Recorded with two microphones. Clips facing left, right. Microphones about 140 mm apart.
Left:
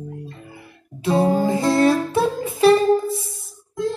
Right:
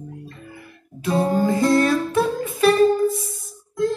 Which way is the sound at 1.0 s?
25° left (ahead or behind).